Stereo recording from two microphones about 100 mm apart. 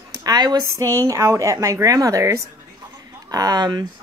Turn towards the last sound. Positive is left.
turn(degrees=-45)  # may be behind; listen again after turning